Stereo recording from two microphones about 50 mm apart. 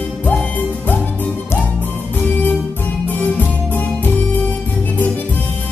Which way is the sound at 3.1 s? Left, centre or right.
Left.